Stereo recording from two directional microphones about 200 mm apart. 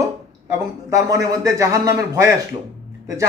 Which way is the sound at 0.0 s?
15° right (ahead or behind).